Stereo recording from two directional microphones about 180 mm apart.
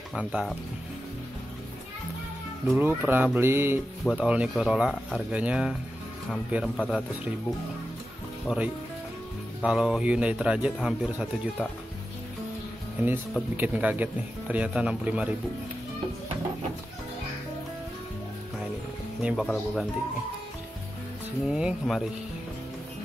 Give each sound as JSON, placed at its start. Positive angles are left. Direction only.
{"t": 0.1, "sound": "speech", "side_deg": 0}
{"t": 2.6, "sound": "speech", "side_deg": -5}
{"t": 8.5, "sound": "speech", "side_deg": -5}
{"t": 13.3, "sound": "speech", "side_deg": -10}
{"t": 19.2, "sound": "speech", "side_deg": 0}
{"t": 21.5, "sound": "speech", "side_deg": -5}